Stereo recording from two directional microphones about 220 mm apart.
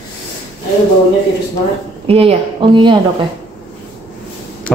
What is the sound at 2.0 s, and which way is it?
Speech, 25° right (ahead or behind).